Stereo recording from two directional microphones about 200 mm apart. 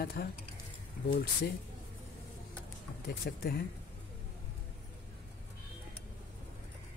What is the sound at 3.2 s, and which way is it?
Speech, 50° left (ahead or behind).